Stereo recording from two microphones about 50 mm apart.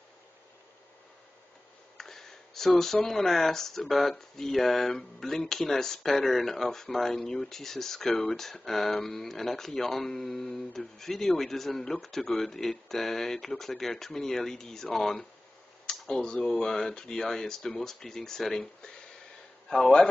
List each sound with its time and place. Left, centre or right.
2.0 s a man's voice: centre